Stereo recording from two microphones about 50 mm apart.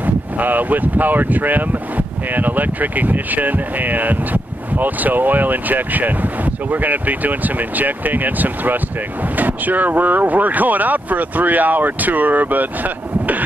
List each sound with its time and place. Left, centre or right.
0.0 s speech: right